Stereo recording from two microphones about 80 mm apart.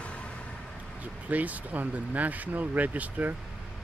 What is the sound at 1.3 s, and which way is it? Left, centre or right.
Speech, centre.